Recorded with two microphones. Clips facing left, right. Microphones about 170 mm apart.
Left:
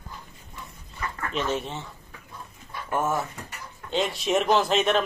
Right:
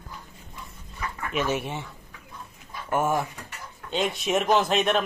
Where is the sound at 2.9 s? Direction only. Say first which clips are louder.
Right 2 dB; 10° right (ahead or behind).